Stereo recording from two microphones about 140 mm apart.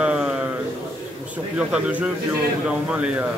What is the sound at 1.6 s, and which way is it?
A man's voice, 5° right (ahead or behind).